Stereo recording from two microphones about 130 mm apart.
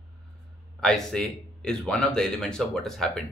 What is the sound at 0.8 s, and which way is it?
Speech, 5° left (ahead or behind).